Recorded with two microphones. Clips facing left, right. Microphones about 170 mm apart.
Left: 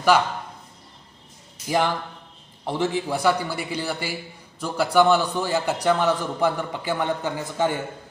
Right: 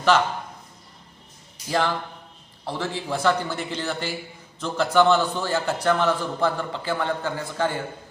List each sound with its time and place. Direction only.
1.7 s a man's voice: 15° left (ahead or behind)